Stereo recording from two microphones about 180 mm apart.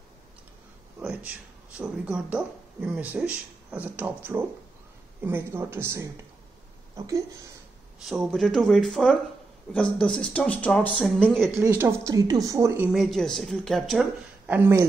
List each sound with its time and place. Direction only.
0.9 s speech: 5° right (ahead or behind)
8.0 s speech: centre (ahead or behind)
11.5 s speech: 15° right (ahead or behind)